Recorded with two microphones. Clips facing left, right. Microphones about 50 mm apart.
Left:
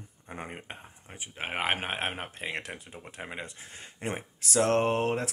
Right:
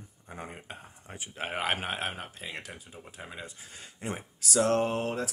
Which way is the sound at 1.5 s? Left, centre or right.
Left.